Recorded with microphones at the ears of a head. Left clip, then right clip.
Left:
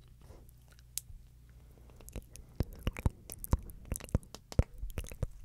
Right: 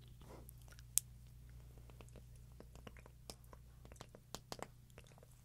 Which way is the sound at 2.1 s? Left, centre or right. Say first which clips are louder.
Left 12 dB; left.